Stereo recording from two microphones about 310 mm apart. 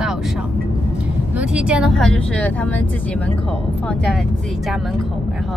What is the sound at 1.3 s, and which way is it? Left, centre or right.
Speech, centre.